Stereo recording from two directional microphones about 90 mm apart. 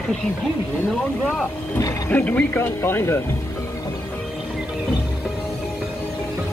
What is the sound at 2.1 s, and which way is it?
Speech, 15° left (ahead or behind).